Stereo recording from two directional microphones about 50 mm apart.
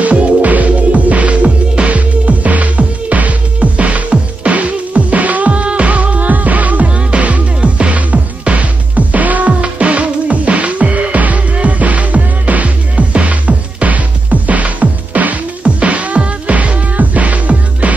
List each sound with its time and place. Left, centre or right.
0.0 s music: right